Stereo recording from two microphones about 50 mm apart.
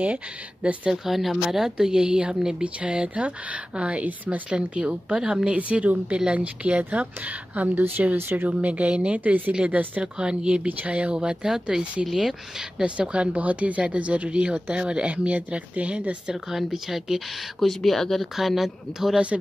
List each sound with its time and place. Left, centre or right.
0.0 s speech: right
0.9 s a woman's voice: centre; by 7.8 s right
8.2 s speech: right
8.5 s speech: right
10.1 s speech: centre
13.0 s speech: right
16.4 s speech: centre